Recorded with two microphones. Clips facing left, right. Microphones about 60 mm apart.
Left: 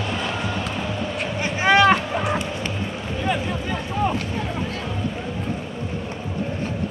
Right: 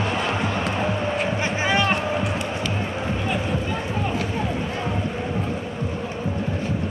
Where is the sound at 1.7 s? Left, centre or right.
Left.